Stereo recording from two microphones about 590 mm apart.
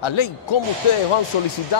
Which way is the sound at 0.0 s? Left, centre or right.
Left.